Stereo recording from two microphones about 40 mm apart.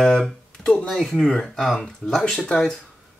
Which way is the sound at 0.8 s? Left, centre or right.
Centre.